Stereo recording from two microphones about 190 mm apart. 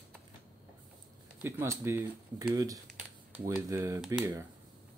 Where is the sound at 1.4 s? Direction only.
15° right (ahead or behind).